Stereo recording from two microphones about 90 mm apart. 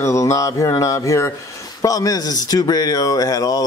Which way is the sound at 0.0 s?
35° left (ahead or behind).